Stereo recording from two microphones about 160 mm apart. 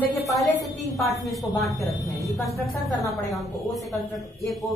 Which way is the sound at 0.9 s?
Centre (ahead or behind).